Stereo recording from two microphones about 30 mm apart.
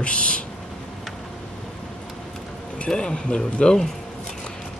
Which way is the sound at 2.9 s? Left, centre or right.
Left.